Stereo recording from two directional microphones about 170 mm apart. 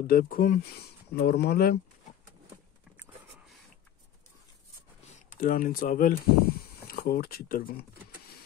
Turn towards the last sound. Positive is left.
turn(degrees=55)  # may be behind; listen again after turning